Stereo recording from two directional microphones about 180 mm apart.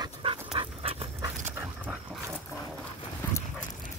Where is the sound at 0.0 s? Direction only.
30° right (ahead or behind).